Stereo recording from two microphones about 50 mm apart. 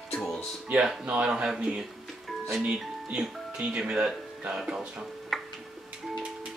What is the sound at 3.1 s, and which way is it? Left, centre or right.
Speech, centre.